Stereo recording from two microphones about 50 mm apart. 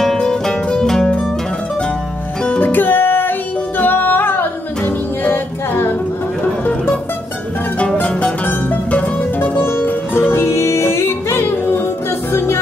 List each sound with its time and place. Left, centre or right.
0.0 s music: centre
2.4 s music: left
7.8 s music: left
8.5 s music: left
9.8 s music: left